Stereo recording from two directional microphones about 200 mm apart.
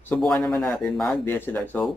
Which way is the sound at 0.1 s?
5° left (ahead or behind).